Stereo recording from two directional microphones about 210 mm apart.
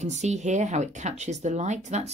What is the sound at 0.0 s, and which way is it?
Speech, 35° right (ahead or behind).